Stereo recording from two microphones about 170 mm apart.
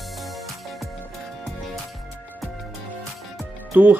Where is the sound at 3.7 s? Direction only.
10° right (ahead or behind).